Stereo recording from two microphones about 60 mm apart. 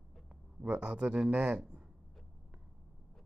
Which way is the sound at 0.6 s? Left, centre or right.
Centre.